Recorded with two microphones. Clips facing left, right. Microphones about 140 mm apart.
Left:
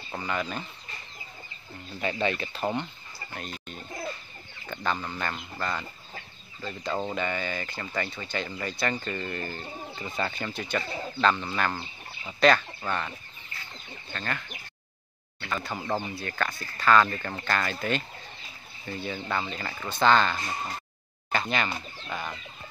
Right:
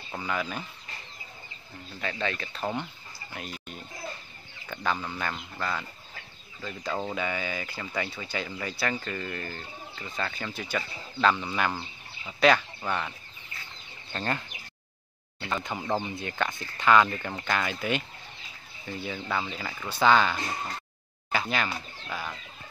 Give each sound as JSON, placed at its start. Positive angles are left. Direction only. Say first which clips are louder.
{"t": 0.1, "sound": "speech", "louder": "even", "side_deg": 0}
{"t": 2.0, "sound": "speech", "louder": "left 4 dB", "side_deg": 10}
{"t": 3.3, "sound": "speech", "louder": "even", "side_deg": -5}
{"t": 10.3, "sound": "speech", "louder": "left 2 dB", "side_deg": 0}
{"t": 14.1, "sound": "speech", "louder": "right 3 dB", "side_deg": -25}
{"t": 15.4, "sound": "speech", "louder": "right 1 dB", "side_deg": -20}